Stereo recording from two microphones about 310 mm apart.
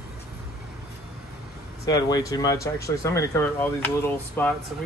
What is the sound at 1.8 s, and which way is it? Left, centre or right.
Speech, centre.